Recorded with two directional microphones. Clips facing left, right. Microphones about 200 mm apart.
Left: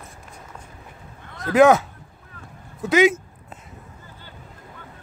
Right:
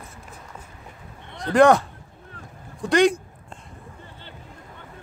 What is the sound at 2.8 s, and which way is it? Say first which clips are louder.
Speech: left 1 dB; 5° left (ahead or behind).